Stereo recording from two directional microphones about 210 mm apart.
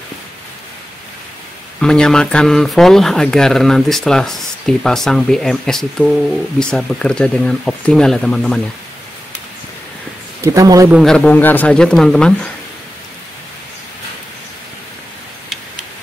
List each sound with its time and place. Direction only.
1.8 s speech: 5° left (ahead or behind)
10.4 s a man's voice: 15° right (ahead or behind)
10.9 s speech: centre (ahead or behind)